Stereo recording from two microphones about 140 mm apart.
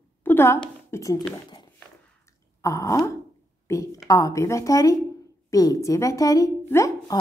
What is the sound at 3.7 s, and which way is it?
A woman's voice, 20° left (ahead or behind).